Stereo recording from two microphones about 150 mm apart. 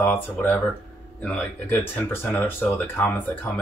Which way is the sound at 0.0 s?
15° left (ahead or behind).